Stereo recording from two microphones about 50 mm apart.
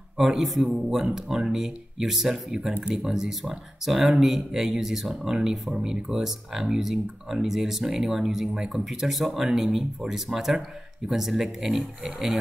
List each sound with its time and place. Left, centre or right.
0.2 s a man's voice: centre